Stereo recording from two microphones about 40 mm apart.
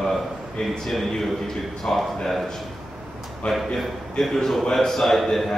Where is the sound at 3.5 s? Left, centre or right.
Centre.